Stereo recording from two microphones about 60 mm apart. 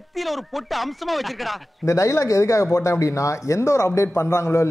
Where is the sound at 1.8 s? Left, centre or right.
Left.